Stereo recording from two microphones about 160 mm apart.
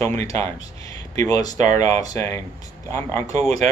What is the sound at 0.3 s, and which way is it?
Speech, 20° left (ahead or behind).